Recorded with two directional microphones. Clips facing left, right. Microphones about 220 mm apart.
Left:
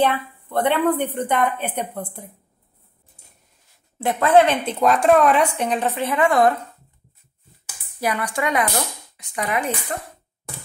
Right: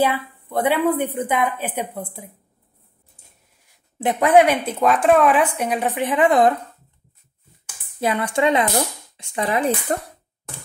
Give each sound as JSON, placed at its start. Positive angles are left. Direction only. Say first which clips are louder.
{"t": 0.0, "sound": "speech", "louder": "even", "side_deg": -5}
{"t": 4.0, "sound": "speech", "louder": "right 1 dB", "side_deg": -15}
{"t": 8.0, "sound": "speech", "louder": "right 4 dB", "side_deg": -25}